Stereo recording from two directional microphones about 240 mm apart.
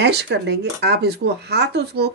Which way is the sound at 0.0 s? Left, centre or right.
Right.